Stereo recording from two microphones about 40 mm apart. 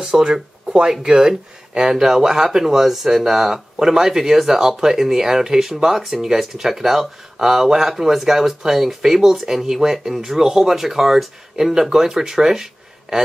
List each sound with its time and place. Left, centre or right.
0.0 s speech: centre